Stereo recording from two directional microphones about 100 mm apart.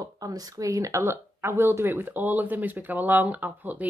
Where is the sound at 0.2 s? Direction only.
35° right (ahead or behind).